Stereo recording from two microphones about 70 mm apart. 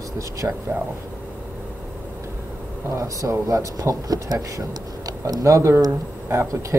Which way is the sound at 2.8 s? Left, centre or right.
Right.